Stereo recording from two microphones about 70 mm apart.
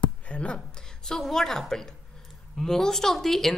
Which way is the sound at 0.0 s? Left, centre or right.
Centre.